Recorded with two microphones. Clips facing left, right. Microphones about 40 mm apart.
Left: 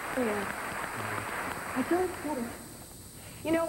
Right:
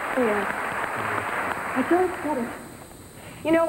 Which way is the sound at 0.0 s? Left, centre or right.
Right.